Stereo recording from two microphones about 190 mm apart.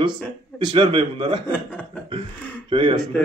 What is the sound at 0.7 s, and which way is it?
Speech, 30° right (ahead or behind).